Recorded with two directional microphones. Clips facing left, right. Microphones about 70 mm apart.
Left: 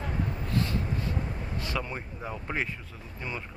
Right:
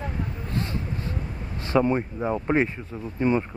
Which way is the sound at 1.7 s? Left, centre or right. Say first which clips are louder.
Right 16 dB; right.